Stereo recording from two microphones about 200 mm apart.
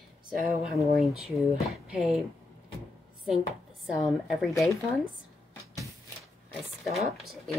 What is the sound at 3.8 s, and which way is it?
Speech, centre (ahead or behind).